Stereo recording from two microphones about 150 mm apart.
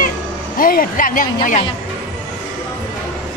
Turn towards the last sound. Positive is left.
turn(degrees=65)  # may be behind; listen again after turning